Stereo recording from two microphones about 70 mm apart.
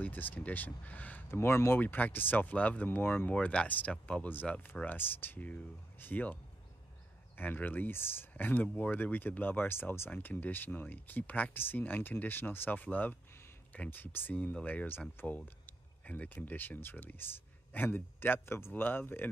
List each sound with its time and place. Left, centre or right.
0.0 s speech: left
1.3 s speech: left
7.3 s speech: left
14.9 s speech: left